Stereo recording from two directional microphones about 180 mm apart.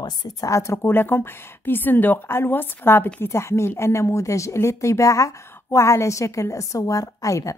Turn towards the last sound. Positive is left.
turn(degrees=15)  # may be behind; listen again after turning